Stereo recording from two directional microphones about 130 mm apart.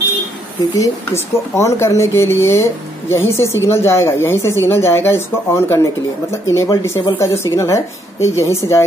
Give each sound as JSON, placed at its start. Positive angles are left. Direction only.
{"t": 0.7, "sound": "speech", "side_deg": 25}